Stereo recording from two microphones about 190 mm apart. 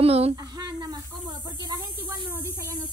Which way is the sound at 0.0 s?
30° right (ahead or behind).